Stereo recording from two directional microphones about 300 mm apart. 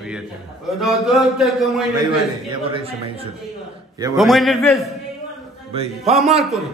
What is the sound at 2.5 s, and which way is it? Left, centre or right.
Speech, centre.